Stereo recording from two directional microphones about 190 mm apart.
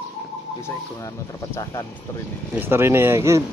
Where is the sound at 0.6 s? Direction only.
15° left (ahead or behind).